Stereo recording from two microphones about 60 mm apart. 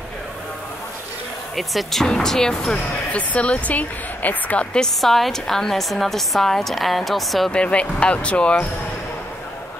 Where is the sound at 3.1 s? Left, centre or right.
Left.